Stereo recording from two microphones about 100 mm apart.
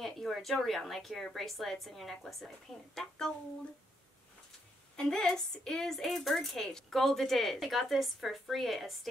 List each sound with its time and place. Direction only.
0.0 s a woman's voice: centre (ahead or behind)
4.9 s a woman's voice: 10° left (ahead or behind)